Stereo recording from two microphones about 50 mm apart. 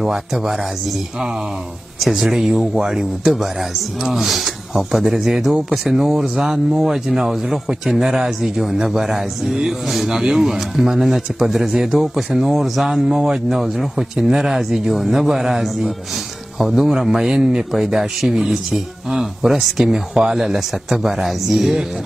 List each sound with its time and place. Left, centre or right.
0.0 s speech: centre
2.0 s speech: centre